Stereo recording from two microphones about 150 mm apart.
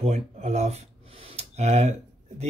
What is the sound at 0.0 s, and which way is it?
Speech, 45° right (ahead or behind).